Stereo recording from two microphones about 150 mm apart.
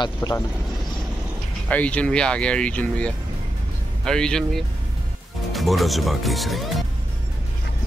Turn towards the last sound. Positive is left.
turn(degrees=0)  # may be behind; listen again after turning